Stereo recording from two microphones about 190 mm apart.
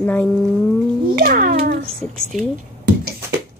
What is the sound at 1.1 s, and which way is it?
Speech, 50° right (ahead or behind).